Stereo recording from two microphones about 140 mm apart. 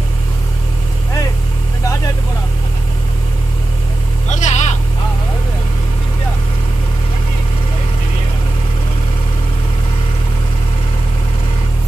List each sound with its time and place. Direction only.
4.3 s vehicle: 55° left (ahead or behind)